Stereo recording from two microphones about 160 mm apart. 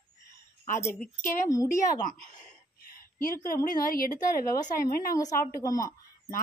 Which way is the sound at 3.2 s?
60° left (ahead or behind).